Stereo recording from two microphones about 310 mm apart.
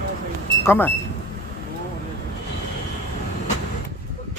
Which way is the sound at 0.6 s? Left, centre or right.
Centre.